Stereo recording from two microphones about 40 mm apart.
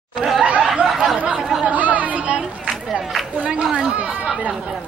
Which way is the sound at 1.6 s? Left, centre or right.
Right.